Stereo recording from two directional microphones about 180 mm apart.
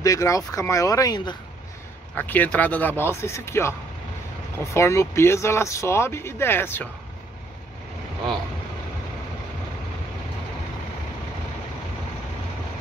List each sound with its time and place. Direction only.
0.0 s speech: 20° left (ahead or behind)
2.1 s speech: 10° left (ahead or behind)
4.7 s speech: 15° left (ahead or behind)